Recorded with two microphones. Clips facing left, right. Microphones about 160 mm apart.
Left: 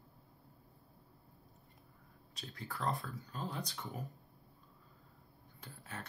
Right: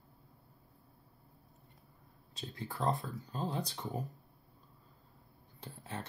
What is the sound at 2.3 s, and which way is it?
Speech, 25° right (ahead or behind).